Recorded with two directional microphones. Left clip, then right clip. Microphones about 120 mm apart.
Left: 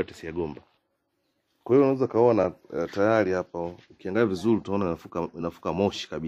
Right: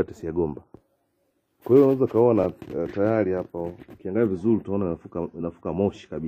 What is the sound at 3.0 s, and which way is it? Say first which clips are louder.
Speech: left 1 dB; 15° left (ahead or behind).